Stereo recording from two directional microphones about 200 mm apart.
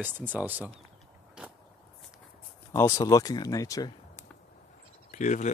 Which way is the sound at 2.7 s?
15° left (ahead or behind).